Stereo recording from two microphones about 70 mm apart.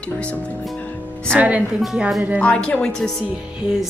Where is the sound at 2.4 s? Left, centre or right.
Centre.